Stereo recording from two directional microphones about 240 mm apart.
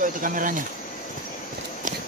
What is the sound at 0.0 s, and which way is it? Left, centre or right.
Speech, right.